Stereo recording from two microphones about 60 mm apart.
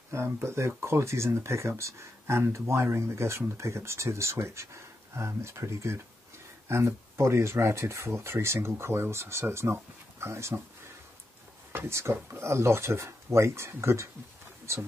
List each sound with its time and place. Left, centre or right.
0.1 s speech: right
11.7 s speech: right